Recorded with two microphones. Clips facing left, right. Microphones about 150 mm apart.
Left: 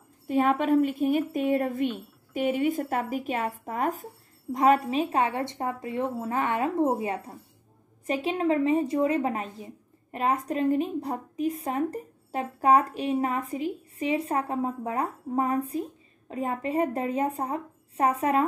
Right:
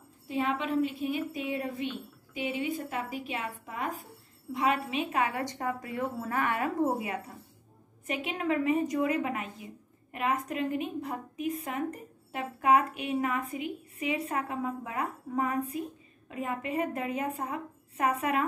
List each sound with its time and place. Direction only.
0.3 s a woman's voice: 50° left (ahead or behind); by 18.4 s 30° left (ahead or behind)